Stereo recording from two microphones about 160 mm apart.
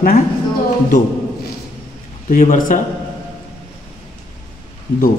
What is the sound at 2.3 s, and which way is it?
Speech, 55° left (ahead or behind).